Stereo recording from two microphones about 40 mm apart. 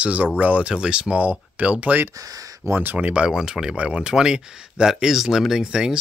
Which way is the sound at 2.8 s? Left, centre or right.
Right.